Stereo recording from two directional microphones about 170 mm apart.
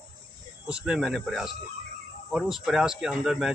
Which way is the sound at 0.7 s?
5° right (ahead or behind).